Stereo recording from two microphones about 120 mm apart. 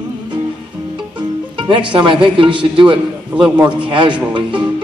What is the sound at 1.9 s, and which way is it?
A man's voice, 40° right (ahead or behind).